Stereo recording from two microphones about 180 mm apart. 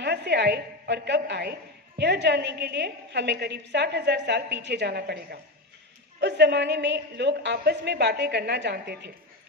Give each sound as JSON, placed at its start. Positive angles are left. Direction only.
{"t": 0.0, "sound": "a woman's voice", "side_deg": -70}